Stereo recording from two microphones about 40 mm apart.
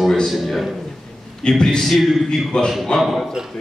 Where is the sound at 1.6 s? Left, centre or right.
Centre.